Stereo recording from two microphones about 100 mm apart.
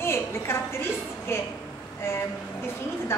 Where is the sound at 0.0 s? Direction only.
25° left (ahead or behind).